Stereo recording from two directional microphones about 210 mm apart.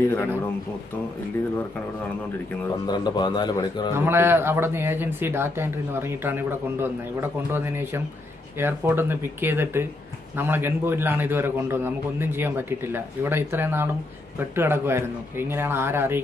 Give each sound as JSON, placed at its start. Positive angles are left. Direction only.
{"t": 2.9, "sound": "a man's voice", "side_deg": 20}
{"t": 3.9, "sound": "a man's voice", "side_deg": -10}